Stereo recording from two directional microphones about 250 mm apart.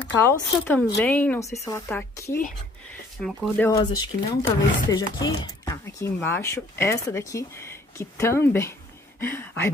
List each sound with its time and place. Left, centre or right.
0.0 s speech: centre